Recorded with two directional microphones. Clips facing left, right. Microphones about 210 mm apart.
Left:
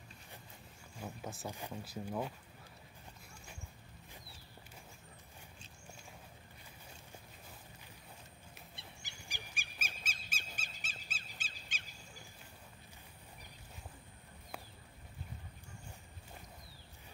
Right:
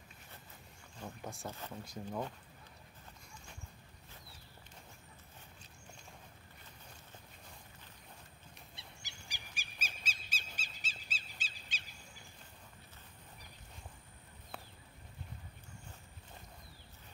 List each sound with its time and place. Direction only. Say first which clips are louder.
0.9 s speech: left 1 dB; 5° left (ahead or behind)
8.7 s a sound: left 1 dB; 55° left (ahead or behind)
14.5 s clip-clop: left 1 dB; 10° left (ahead or behind)